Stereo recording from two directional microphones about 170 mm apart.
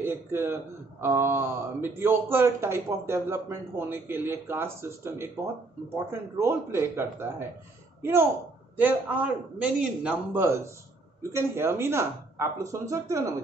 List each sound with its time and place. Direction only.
0.0 s a man's voice: 15° right (ahead or behind)